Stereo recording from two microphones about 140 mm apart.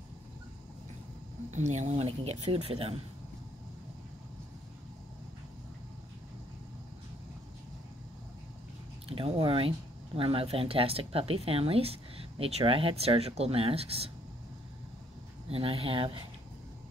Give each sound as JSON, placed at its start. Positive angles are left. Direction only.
{"t": 1.5, "sound": "speech", "side_deg": -55}
{"t": 9.0, "sound": "speech", "side_deg": -45}
{"t": 15.5, "sound": "speech", "side_deg": -40}